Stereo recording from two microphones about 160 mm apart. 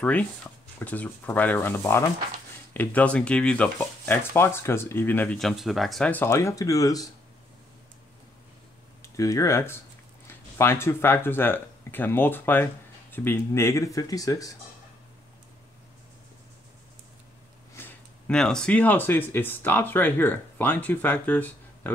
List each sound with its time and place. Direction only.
0.0 s speech: 10° left (ahead or behind)
9.0 s speech: 20° left (ahead or behind)
17.7 s speech: 10° left (ahead or behind)